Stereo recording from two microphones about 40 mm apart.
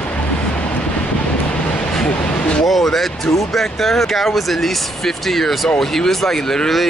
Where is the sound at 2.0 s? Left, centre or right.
Left.